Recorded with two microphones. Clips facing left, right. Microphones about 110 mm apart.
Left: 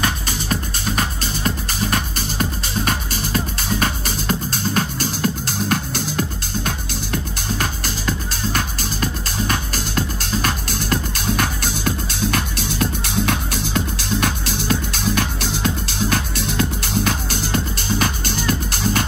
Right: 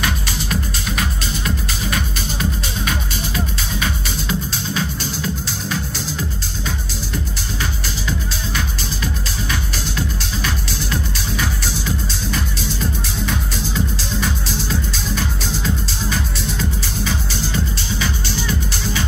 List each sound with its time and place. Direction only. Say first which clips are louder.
0.0 s music: even; 40° left (ahead or behind); by 7.2 s 60° left (ahead or behind)
8.5 s music: left 2 dB; 45° left (ahead or behind)